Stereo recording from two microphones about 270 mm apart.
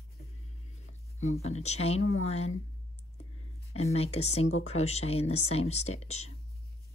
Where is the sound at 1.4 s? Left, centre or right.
Left.